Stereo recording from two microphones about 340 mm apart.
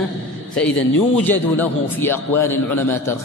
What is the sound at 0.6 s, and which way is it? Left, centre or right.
A man's voice, centre.